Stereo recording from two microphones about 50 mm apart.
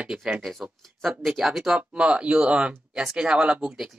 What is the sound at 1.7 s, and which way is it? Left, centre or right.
Speech, right.